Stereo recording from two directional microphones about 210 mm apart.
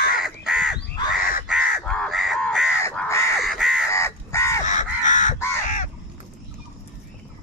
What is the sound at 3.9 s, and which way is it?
Crow, 15° left (ahead or behind).